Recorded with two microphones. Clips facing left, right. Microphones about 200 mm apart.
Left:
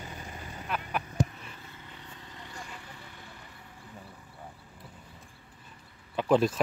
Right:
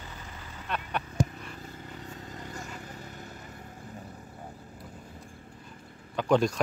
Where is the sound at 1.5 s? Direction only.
40° right (ahead or behind).